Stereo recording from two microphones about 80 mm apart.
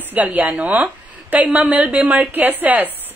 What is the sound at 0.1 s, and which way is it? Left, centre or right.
A woman's voice, right.